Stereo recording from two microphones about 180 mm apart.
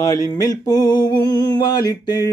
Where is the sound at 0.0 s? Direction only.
20° left (ahead or behind).